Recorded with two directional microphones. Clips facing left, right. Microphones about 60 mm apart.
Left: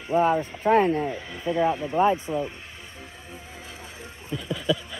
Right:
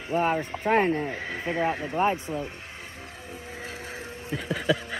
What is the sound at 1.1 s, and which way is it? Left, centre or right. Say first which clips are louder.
Speech: left 2 dB; right.